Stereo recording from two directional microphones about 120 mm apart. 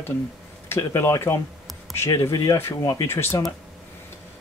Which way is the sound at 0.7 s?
25° left (ahead or behind).